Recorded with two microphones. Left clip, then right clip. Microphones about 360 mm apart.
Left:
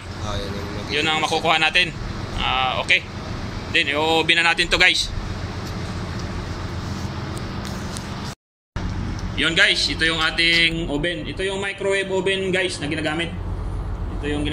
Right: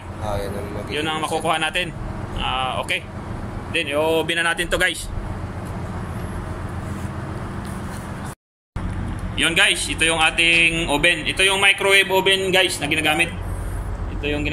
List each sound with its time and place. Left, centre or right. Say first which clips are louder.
0.9 s speech: left 3 dB; centre
9.4 s speech: even; centre
11.5 s speech: right 7 dB; right
12.3 s a man's voice: right 4 dB; centre